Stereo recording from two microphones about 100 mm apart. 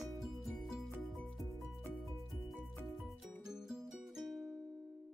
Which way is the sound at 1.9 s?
Centre (ahead or behind).